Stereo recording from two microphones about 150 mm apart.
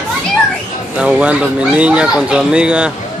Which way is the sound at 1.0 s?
5° right (ahead or behind).